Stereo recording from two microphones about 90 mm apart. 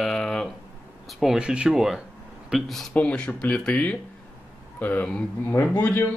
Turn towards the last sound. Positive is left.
turn(degrees=25)  # may be behind; listen again after turning